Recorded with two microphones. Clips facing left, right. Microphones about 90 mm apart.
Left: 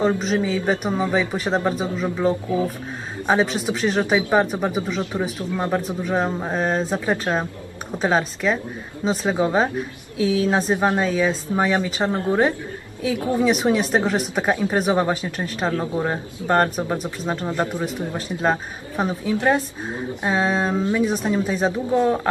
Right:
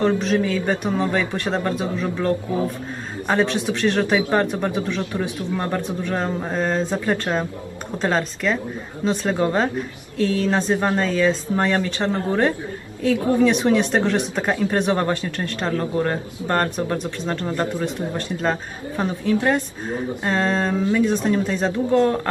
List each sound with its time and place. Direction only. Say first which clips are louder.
0.0 s speech: right 1 dB; 10° left (ahead or behind)
17.8 s speech: right 1 dB; 10° left (ahead or behind)
20.7 s speech: right 1 dB; 20° left (ahead or behind)
21.0 s speech: right 2 dB; 5° left (ahead or behind)